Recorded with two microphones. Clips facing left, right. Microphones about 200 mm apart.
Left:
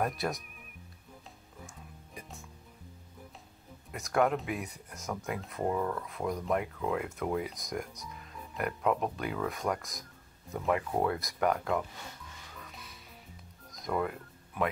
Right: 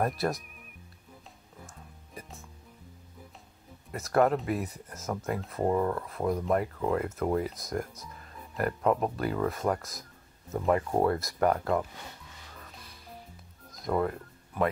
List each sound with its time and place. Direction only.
0.0 s speech: centre (ahead or behind)
3.9 s speech: centre (ahead or behind)
5.8 s speech: 10° right (ahead or behind)
6.0 s speech: centre (ahead or behind)
10.6 s speech: 35° right (ahead or behind)
11.0 s speech: centre (ahead or behind)
13.7 s a sound: centre (ahead or behind)